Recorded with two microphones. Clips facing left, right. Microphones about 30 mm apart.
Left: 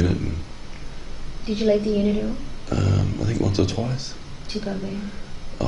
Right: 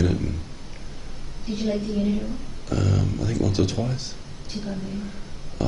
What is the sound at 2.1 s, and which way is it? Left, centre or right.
Speech, left.